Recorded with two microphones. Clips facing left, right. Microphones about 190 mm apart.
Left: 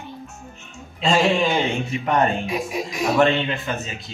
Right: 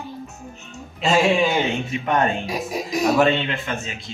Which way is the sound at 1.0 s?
5° right (ahead or behind).